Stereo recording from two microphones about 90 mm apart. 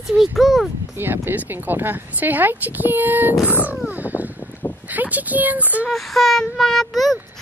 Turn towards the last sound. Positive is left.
turn(degrees=0)  # may be behind; listen again after turning